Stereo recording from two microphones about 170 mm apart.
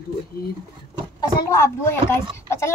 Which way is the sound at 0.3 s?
65° left (ahead or behind).